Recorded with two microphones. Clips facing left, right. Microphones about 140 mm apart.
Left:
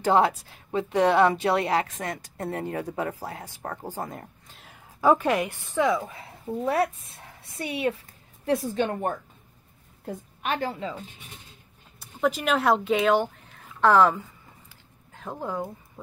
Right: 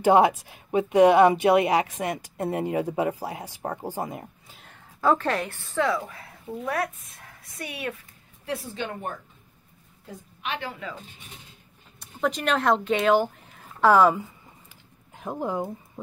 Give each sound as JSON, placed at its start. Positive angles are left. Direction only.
{"t": 0.0, "sound": "speech", "side_deg": -15}
{"t": 5.0, "sound": "a woman's voice", "side_deg": 15}
{"t": 8.5, "sound": "a woman's voice", "side_deg": 40}
{"t": 12.0, "sound": "speech", "side_deg": 5}